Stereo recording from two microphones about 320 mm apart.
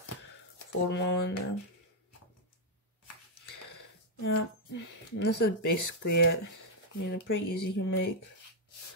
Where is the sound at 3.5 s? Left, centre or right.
Left.